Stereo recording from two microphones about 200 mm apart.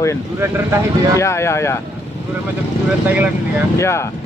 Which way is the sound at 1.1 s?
15° left (ahead or behind).